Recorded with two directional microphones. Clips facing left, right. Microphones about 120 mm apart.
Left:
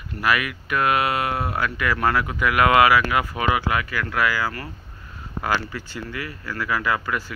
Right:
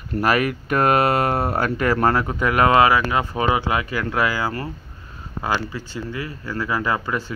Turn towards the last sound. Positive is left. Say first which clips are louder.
# right 1 dB
turn(degrees=-30)  # may be behind; listen again after turning